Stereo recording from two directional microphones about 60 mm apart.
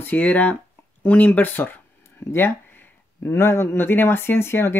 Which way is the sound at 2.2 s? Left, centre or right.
Left.